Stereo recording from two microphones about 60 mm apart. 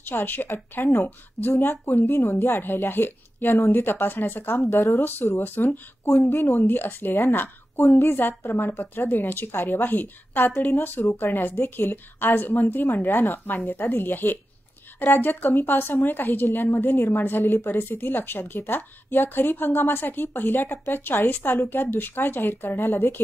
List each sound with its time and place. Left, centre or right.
0.0 s a woman's voice: left
4.6 s a woman's voice: left
5.4 s speech: left
6.0 s speech: left
6.3 s a woman's voice: left
6.6 s speech: left
16.8 s a woman's voice: left
17.2 s speech: left